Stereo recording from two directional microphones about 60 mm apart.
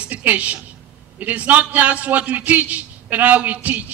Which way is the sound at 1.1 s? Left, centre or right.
Right.